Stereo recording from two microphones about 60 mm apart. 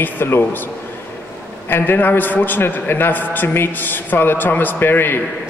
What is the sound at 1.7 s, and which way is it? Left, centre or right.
Speech, left.